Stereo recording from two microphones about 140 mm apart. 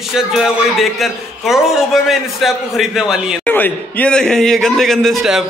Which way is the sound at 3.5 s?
15° left (ahead or behind).